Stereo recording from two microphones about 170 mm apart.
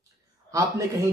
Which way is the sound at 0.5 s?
20° right (ahead or behind).